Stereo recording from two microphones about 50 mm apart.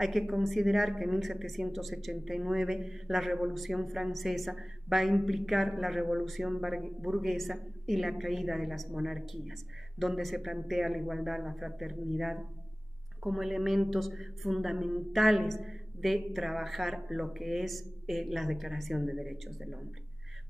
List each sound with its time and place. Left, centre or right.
0.0 s a woman's voice: centre